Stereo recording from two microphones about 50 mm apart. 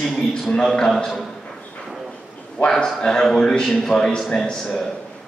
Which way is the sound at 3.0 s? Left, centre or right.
Centre.